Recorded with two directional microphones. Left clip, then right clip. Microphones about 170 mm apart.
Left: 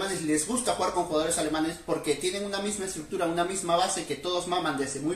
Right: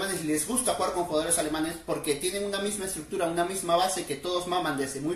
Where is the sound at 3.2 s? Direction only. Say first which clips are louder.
Even; 10° right (ahead or behind).